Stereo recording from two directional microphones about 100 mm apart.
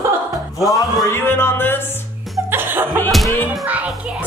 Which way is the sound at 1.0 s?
25° left (ahead or behind).